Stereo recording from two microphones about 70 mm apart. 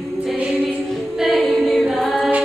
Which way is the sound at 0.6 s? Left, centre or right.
Centre.